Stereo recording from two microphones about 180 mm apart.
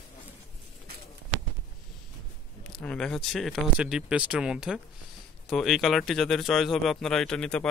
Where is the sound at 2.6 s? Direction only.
5° left (ahead or behind).